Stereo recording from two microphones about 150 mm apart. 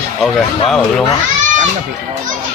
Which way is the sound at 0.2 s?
Centre (ahead or behind).